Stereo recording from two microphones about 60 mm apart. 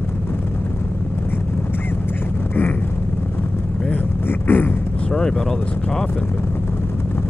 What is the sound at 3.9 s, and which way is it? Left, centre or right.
Vehicle, left.